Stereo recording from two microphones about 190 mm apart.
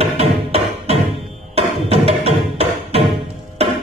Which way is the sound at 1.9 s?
30° right (ahead or behind).